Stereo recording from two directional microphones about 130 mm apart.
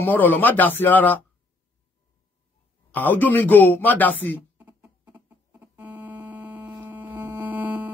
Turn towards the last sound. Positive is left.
turn(degrees=-10)  # may be behind; listen again after turning